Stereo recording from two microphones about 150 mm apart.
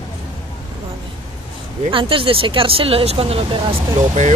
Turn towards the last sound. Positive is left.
turn(degrees=-50)  # may be behind; listen again after turning